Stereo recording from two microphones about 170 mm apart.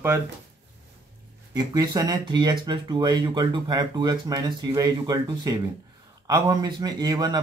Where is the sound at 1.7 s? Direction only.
20° right (ahead or behind).